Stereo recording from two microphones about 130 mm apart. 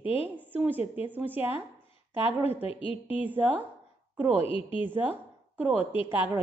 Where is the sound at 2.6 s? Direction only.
50° left (ahead or behind).